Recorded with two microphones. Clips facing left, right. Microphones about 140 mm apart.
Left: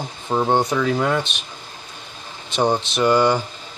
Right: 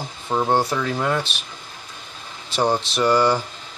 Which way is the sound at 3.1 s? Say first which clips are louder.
Left 1 dB; 25° left (ahead or behind).